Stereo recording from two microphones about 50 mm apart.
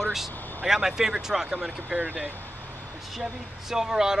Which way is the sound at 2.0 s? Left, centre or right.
Right.